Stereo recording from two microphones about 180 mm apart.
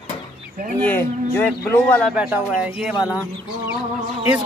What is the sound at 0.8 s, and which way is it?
Speech, 10° left (ahead or behind).